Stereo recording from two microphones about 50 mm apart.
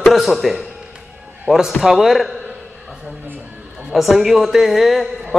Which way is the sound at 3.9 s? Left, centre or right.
Centre.